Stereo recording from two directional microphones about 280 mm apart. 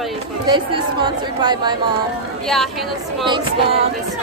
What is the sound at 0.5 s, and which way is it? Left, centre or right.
Speech, centre.